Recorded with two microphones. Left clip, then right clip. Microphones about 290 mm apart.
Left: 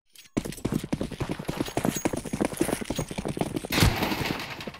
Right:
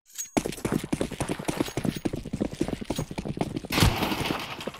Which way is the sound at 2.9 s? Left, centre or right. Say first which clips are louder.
Even; centre.